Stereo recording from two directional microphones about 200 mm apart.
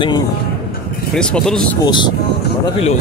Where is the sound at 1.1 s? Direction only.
5° left (ahead or behind).